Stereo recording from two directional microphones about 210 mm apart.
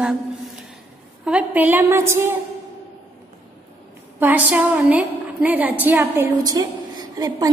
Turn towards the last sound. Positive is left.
turn(degrees=-20)  # may be behind; listen again after turning